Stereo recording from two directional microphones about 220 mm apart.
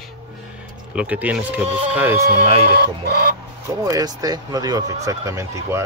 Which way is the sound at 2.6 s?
45° right (ahead or behind).